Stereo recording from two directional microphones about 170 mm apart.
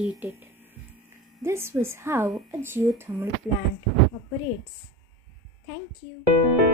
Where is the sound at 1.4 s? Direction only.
15° right (ahead or behind).